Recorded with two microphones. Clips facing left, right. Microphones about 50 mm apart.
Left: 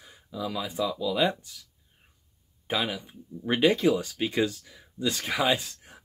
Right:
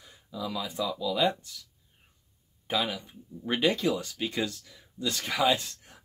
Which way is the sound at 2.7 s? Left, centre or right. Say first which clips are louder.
Left 1 dB; centre.